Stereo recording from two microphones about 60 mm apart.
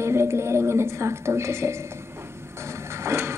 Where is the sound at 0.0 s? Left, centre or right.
Right.